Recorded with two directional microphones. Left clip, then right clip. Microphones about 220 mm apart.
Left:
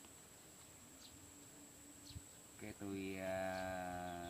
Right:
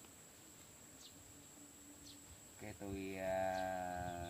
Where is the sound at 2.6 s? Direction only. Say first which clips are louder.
Even; 40° left (ahead or behind).